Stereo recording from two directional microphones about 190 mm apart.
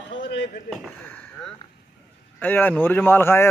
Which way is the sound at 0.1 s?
70° left (ahead or behind).